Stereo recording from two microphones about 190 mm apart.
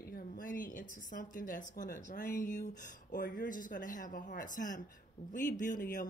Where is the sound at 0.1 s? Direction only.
45° left (ahead or behind).